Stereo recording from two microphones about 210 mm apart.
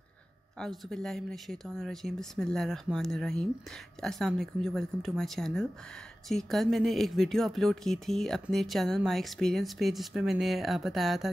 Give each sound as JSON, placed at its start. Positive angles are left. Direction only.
{"t": 0.6, "sound": "speech", "side_deg": 0}